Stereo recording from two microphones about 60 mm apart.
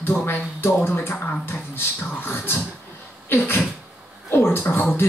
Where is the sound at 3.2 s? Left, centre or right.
Left.